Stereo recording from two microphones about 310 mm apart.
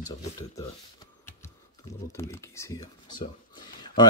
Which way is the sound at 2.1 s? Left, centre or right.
Centre.